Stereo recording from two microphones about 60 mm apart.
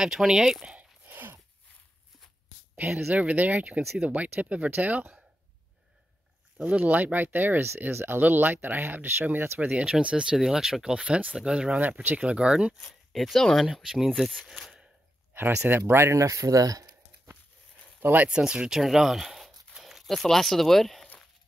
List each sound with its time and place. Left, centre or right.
0.0 s speech: centre
0.7 s a sound: right
3.1 s speech: right
6.6 s speech: right
8.2 s speech: right
9.7 s speech: centre
11.8 s speech: right
13.1 s speech: centre
13.8 s speech: centre
14.6 s a sound: centre
15.3 s speech: right
16.2 s speech: right
18.0 s speech: right
18.3 s speech: centre